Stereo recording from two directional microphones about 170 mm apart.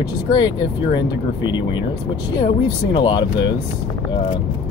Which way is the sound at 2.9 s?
25° left (ahead or behind).